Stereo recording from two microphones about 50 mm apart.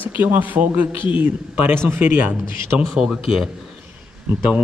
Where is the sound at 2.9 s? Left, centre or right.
Centre.